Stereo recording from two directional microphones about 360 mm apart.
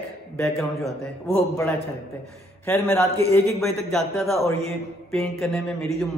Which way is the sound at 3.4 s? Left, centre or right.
Centre.